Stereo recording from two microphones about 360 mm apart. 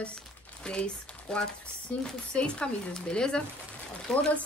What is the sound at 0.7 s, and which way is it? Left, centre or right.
Speech, centre.